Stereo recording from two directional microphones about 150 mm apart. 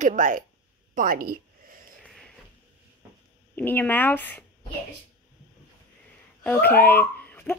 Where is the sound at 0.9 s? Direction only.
75° right (ahead or behind).